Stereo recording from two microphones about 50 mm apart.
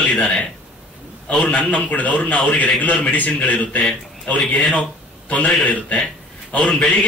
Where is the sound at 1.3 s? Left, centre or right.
Left.